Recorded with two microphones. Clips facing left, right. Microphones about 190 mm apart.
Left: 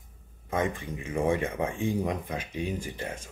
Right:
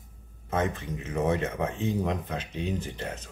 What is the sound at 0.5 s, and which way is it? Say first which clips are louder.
Speech: even; 10° left (ahead or behind).